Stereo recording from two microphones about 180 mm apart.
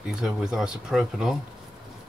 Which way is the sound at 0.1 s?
Centre (ahead or behind).